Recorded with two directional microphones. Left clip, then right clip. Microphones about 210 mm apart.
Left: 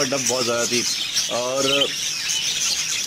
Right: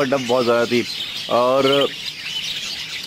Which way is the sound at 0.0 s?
10° right (ahead or behind).